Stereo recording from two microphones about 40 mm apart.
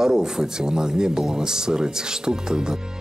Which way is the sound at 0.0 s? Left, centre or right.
Centre.